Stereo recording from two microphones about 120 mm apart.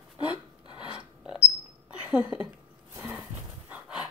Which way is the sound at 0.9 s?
5° right (ahead or behind).